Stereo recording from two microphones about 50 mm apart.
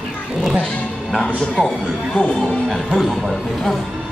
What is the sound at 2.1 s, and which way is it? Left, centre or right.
Speech, centre.